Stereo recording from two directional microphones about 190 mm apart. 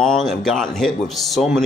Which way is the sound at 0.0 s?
Centre (ahead or behind).